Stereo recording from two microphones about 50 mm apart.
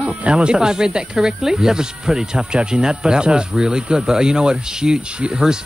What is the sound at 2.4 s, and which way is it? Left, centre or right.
Speech, right.